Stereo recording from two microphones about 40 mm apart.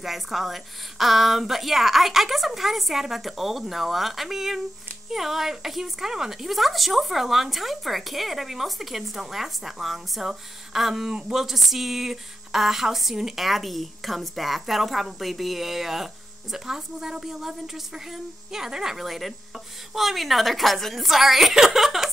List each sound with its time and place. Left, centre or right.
0.0 s a woman's voice: centre
11.1 s speech: centre
11.4 s a woman's voice: centre